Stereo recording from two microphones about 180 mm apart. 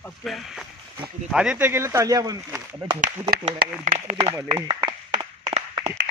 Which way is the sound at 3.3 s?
55° right (ahead or behind).